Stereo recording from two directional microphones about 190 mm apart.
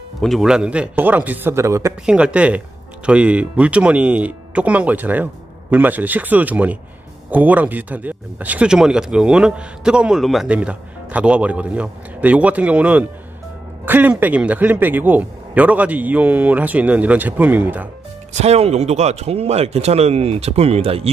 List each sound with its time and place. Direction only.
0.2 s speech: centre (ahead or behind)
18.3 s speech: 35° right (ahead or behind)